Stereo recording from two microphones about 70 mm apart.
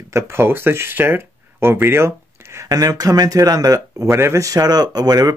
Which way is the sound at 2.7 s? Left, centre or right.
Right.